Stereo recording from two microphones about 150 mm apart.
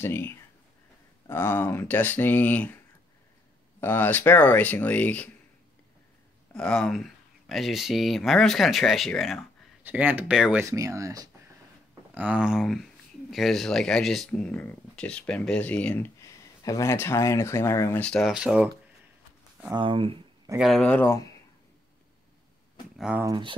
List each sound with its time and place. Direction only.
0.0 s speech: 15° left (ahead or behind)
3.8 s speech: 15° left (ahead or behind)
6.5 s speech: 5° left (ahead or behind)
9.8 s speech: 10° right (ahead or behind)
10.6 s speech: 20° right (ahead or behind)
12.1 s speech: 10° right (ahead or behind); by 16.1 s 10° left (ahead or behind)
16.2 s speech: 20° left (ahead or behind)
18.3 s speech: 5° right (ahead or behind)
19.7 s speech: 35° right (ahead or behind)
20.5 s speech: centre (ahead or behind); by 21.3 s 15° left (ahead or behind)
22.9 s speech: 5° right (ahead or behind)
23.2 s speech: 30° right (ahead or behind)